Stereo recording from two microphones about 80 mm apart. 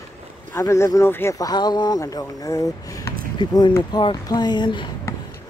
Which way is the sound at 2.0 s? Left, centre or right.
Left.